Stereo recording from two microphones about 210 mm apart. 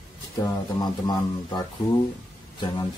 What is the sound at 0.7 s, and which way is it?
Speech, 20° left (ahead or behind).